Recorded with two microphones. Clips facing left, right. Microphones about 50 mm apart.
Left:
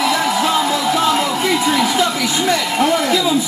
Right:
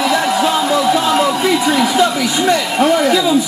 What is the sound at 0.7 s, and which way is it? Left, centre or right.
Music, centre.